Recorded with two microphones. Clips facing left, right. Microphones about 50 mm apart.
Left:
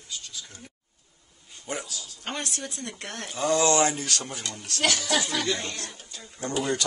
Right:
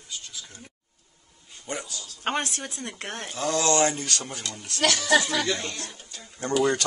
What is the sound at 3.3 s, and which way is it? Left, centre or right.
Speech, centre.